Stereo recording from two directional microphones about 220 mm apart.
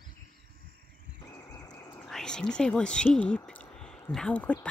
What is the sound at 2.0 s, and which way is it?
Speech, centre (ahead or behind).